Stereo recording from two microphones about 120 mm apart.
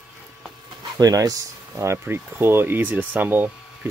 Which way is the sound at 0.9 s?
30° right (ahead or behind).